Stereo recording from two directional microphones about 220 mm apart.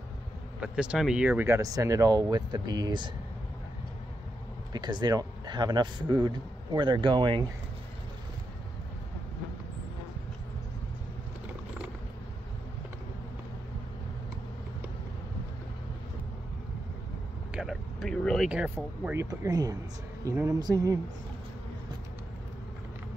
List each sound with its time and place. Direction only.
0.6 s speech: 5° right (ahead or behind)
4.7 s a man's voice: 20° right (ahead or behind)
17.5 s speech: 5° right (ahead or behind)